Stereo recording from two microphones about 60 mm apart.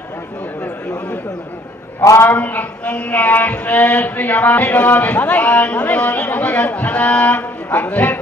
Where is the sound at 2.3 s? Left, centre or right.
Left.